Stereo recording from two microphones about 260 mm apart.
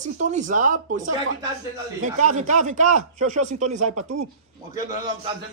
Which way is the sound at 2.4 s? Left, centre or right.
Right.